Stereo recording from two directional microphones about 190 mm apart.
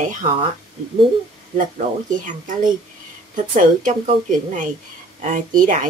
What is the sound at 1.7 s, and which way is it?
A woman's voice, 45° right (ahead or behind).